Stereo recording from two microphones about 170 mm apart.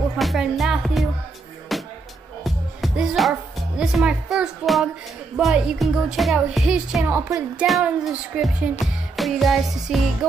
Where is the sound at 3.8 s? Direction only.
5° right (ahead or behind).